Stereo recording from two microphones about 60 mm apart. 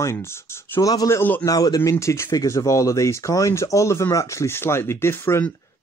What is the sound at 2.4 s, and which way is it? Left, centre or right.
Speech, left.